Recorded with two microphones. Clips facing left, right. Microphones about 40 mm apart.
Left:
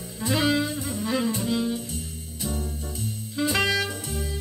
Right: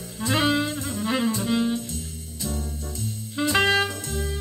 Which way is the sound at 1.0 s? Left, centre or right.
Right.